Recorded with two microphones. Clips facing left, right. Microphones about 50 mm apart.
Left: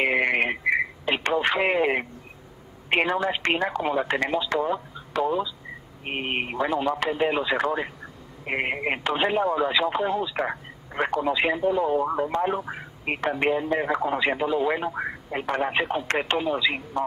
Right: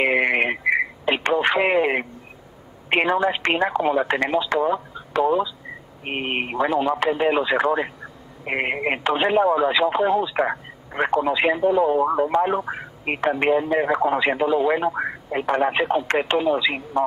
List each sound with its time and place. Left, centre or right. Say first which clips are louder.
0.0 s radio: right 3 dB; centre
2.9 s speech: right 4 dB; centre